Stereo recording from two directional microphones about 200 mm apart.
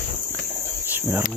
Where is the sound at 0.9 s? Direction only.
10° right (ahead or behind).